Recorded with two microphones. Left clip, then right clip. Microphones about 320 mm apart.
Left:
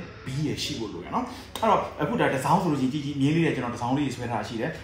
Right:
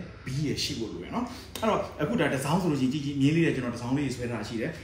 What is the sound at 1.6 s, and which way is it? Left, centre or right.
Speech, centre.